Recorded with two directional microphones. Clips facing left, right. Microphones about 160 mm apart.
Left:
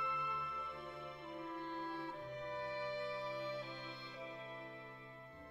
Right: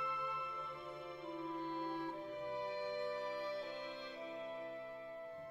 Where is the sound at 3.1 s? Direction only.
45° right (ahead or behind).